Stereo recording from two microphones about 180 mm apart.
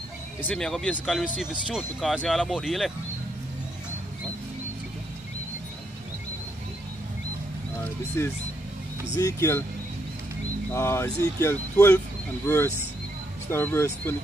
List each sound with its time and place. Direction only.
0.4 s speech: 5° left (ahead or behind)
8.2 s speech: 15° left (ahead or behind)
10.7 s speech: 15° left (ahead or behind)